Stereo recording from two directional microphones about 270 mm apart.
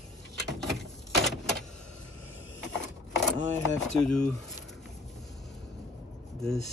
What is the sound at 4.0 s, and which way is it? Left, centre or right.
Speech, centre.